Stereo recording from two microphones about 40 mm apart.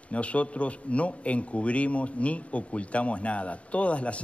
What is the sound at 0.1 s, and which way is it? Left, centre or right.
Speech, left.